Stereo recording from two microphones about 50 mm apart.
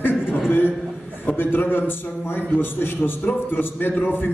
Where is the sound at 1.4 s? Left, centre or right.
Left.